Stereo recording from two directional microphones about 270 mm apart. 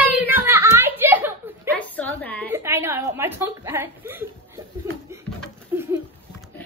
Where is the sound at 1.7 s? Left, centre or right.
Centre.